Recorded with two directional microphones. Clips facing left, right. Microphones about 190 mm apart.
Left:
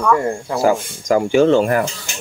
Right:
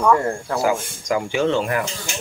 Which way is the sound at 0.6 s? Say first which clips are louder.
Left 6 dB; 40° left (ahead or behind).